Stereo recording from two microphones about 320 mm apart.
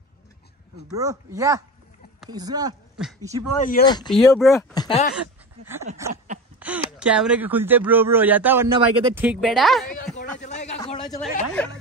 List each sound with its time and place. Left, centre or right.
0.8 s speech: centre
3.5 s speech: left
3.8 s speech: centre
4.1 s speech: centre
4.7 s speech: centre
6.6 s speech: centre
10.4 s a sound: left
11.1 s speech: centre